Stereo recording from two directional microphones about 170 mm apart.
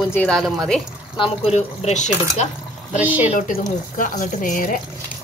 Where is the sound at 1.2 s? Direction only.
40° left (ahead or behind).